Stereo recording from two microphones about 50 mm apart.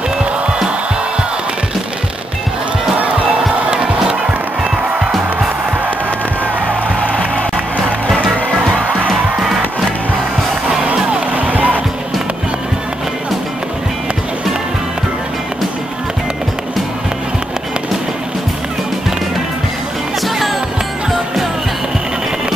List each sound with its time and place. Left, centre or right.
3.7 s music: centre
8.9 s music: centre
11.1 s music: right